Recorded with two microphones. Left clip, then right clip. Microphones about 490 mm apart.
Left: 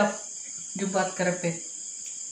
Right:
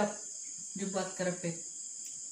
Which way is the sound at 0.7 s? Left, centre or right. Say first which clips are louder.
Left 9 dB; left.